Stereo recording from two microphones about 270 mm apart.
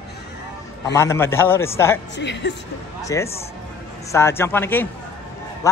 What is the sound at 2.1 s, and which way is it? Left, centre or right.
Speech, left.